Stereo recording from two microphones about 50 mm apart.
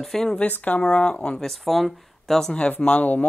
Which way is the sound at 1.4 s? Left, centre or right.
Centre.